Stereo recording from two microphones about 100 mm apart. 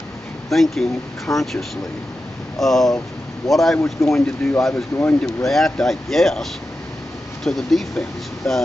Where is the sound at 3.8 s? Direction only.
30° left (ahead or behind).